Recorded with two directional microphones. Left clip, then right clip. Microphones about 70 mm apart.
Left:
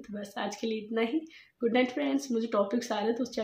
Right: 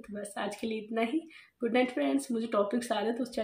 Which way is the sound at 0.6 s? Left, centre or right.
Left.